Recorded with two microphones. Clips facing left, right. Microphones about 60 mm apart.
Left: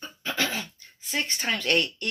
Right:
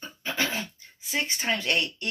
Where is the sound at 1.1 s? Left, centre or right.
Centre.